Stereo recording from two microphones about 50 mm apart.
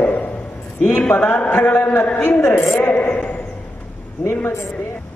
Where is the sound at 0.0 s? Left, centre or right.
Left.